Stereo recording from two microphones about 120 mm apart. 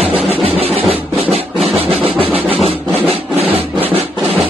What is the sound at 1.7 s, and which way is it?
Music, 50° right (ahead or behind).